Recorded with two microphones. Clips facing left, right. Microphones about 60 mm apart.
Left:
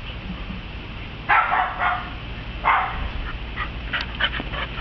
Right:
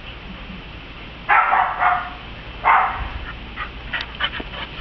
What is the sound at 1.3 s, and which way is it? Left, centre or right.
Dog, centre.